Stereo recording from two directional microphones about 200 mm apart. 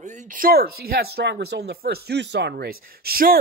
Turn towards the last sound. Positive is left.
turn(degrees=-50)  # may be behind; listen again after turning